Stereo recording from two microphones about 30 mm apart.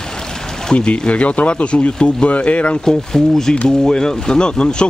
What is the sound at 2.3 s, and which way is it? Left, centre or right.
Speech, left.